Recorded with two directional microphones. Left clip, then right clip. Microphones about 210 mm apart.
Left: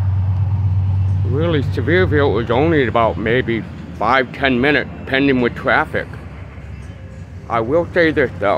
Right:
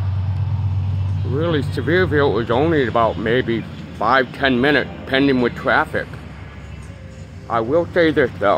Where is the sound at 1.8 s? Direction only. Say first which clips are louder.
Left 1 dB; 5° left (ahead or behind).